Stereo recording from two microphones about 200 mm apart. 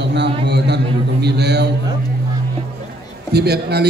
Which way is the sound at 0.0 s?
60° right (ahead or behind).